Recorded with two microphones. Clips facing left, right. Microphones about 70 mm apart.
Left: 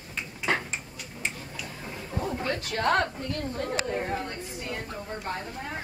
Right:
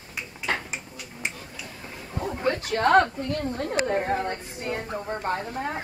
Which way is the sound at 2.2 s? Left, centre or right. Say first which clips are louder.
Right 4 dB; centre.